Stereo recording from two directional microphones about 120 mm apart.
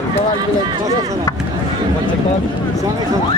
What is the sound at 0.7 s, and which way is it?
Speech, 35° right (ahead or behind).